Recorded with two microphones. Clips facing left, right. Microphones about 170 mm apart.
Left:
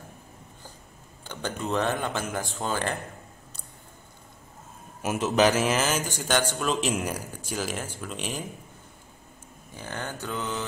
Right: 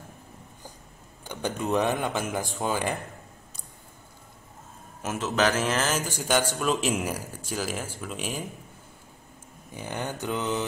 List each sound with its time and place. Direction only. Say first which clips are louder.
1.2 s speech: right 2 dB; 15° right (ahead or behind)
5.0 s a man's voice: left 3 dB; 15° left (ahead or behind); by 8.5 s 5° right (ahead or behind)
9.8 s speech: right 3 dB; 15° right (ahead or behind)